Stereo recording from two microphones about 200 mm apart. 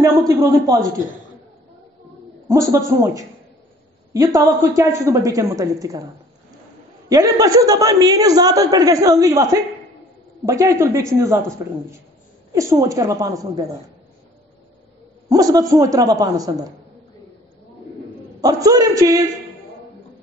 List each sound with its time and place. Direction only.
0.0 s a woman's voice: 15° right (ahead or behind)
2.4 s a woman's voice: 15° right (ahead or behind)
7.1 s a woman's voice: 15° right (ahead or behind)
15.2 s a woman's voice: 20° right (ahead or behind)
18.4 s a woman's voice: 20° right (ahead or behind)